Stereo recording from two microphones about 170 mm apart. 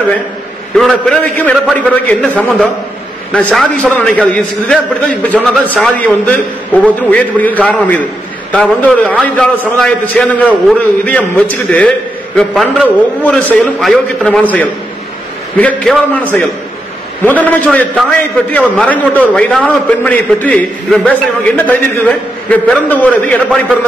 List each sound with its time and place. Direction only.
0.7 s a man's voice: 5° left (ahead or behind)